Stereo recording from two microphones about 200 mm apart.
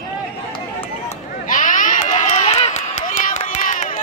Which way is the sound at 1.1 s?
40° left (ahead or behind).